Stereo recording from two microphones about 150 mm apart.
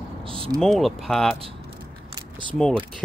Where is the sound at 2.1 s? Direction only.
35° right (ahead or behind).